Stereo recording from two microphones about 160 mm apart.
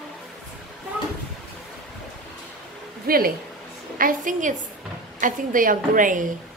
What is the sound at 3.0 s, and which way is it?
A woman's voice, 65° right (ahead or behind).